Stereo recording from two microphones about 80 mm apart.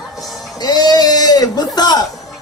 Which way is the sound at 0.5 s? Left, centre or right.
Left.